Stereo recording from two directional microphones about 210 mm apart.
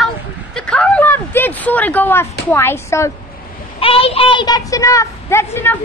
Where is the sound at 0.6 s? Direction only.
5° left (ahead or behind).